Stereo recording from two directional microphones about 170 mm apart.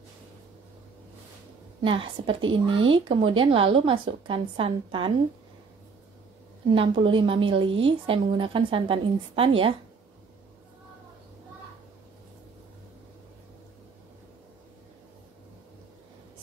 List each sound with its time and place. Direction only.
1.8 s speech: 30° right (ahead or behind)
6.7 s speech: 30° right (ahead or behind)